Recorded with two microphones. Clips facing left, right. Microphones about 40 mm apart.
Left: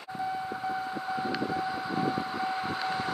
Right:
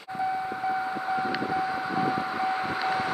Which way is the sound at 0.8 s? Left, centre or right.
Right.